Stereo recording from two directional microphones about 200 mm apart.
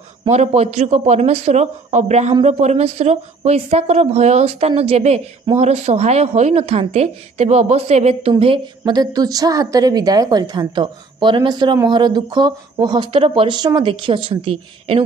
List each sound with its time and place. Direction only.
0.3 s a man's voice: 35° right (ahead or behind)